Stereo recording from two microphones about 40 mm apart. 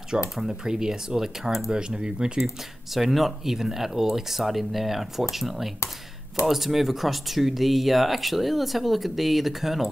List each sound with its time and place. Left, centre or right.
0.1 s speech: centre
1.7 s speech: right
2.4 s speech: centre